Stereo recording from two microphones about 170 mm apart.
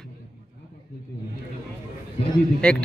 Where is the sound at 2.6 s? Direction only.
5° left (ahead or behind).